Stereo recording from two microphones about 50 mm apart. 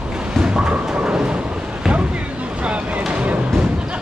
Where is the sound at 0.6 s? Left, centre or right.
Right.